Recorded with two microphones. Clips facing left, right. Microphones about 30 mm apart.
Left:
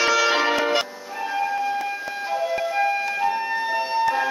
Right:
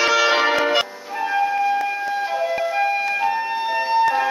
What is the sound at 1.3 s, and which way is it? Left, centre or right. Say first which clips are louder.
Flute: right 5 dB; centre.